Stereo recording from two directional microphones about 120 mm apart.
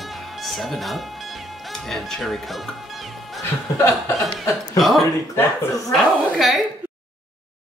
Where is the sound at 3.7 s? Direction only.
25° left (ahead or behind).